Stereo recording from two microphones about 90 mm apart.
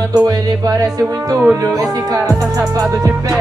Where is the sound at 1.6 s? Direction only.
40° right (ahead or behind).